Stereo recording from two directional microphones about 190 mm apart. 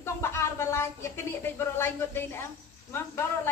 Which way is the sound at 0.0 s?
15° left (ahead or behind).